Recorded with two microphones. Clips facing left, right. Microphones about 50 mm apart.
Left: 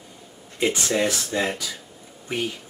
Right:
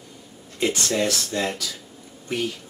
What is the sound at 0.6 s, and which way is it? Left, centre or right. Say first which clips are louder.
Speech: left 1 dB; centre.